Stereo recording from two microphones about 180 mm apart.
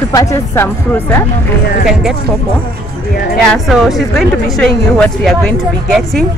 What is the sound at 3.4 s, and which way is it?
Speech, centre (ahead or behind).